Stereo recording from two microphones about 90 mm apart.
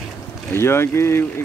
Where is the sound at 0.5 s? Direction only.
30° left (ahead or behind).